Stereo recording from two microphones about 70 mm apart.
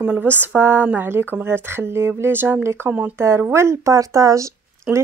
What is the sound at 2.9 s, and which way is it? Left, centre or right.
Speech, right.